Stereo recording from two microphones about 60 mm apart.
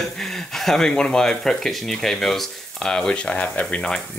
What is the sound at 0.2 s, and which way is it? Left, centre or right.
Speech, centre.